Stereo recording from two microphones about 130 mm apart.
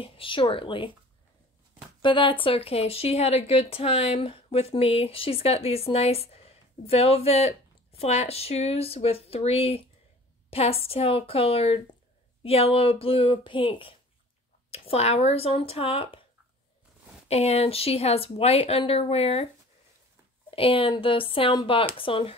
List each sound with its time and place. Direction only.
0.0 s speech: 45° left (ahead or behind)
2.0 s speech: 40° left (ahead or behind)
17.3 s speech: 50° left (ahead or behind)
20.5 s speech: 45° left (ahead or behind)